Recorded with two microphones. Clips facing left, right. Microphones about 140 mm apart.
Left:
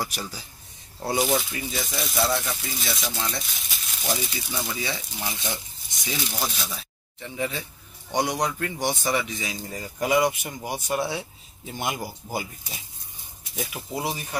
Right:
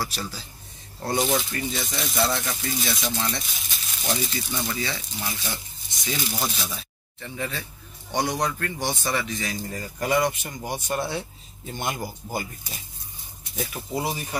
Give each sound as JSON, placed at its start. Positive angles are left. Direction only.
{"t": 0.0, "sound": "speech", "side_deg": 15}
{"t": 1.0, "sound": "speech", "side_deg": 5}
{"t": 4.7, "sound": "a man's voice", "side_deg": 20}
{"t": 6.1, "sound": "speech", "side_deg": 0}
{"t": 7.2, "sound": "a man's voice", "side_deg": 15}